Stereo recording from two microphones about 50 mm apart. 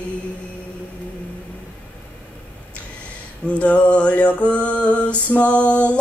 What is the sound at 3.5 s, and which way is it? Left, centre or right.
Music, left.